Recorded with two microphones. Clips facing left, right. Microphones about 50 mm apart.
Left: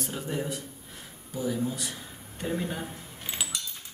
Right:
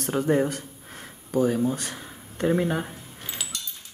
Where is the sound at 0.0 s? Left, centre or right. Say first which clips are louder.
Right 10 dB; right.